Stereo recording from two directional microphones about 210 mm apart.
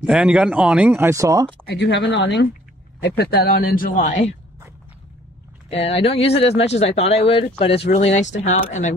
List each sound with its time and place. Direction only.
0.0 s speech: 5° right (ahead or behind)
1.7 s speech: 55° left (ahead or behind)
3.0 s a man's voice: 45° left (ahead or behind)
3.9 s speech: 30° left (ahead or behind)
5.9 s speech: 30° left (ahead or behind)